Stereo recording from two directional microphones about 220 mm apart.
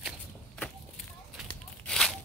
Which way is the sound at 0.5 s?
5° left (ahead or behind).